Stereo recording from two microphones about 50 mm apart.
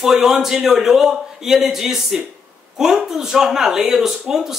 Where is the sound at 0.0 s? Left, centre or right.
Centre.